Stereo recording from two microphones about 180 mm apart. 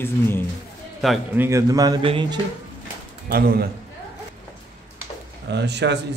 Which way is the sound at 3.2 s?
55° right (ahead or behind).